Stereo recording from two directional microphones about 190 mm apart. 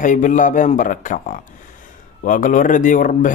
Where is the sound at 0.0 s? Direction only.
40° left (ahead or behind).